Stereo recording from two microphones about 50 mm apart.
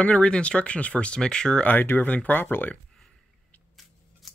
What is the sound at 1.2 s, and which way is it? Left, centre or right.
Speech, centre.